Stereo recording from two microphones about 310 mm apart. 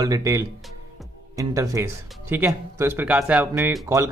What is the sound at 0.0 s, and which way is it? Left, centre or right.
Speech, centre.